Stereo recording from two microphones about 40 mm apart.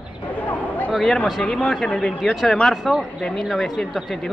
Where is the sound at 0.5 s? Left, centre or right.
Left.